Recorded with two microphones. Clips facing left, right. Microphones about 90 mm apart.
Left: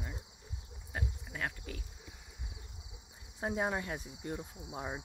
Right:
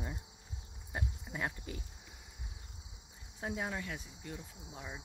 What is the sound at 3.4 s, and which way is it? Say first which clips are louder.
Cricket: left 4 dB; 25° left (ahead or behind).